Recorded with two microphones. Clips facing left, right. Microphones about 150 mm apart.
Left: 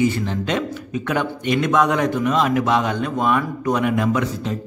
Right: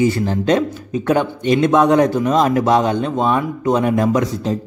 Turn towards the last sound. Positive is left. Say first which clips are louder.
# right 4 dB
turn(degrees=-35)  # may be behind; listen again after turning